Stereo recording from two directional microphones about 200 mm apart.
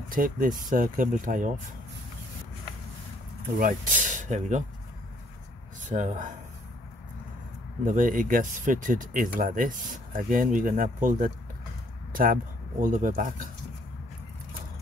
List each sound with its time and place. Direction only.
0.1 s speech: 45° right (ahead or behind)
3.5 s speech: 45° right (ahead or behind)
5.9 s speech: 40° right (ahead or behind)
7.8 s speech: 40° right (ahead or behind)